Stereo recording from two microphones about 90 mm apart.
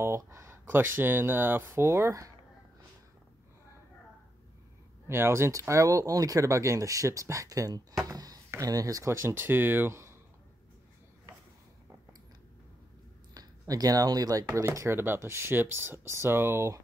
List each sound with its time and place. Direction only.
0.0 s speech: 30° right (ahead or behind)
5.0 s speech: 30° right (ahead or behind)
13.3 s speech: 45° right (ahead or behind)
14.5 s speech: 30° right (ahead or behind)